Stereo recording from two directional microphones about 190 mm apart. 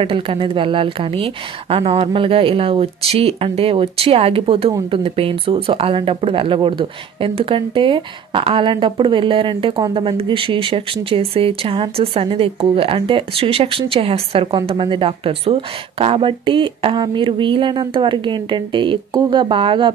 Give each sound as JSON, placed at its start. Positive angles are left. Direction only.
{"t": 0.0, "sound": "speech", "side_deg": -30}